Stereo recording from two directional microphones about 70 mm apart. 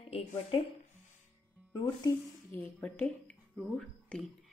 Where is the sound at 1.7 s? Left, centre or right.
Left.